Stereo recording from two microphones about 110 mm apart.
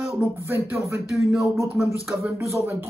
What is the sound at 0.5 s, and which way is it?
Speech, 25° right (ahead or behind).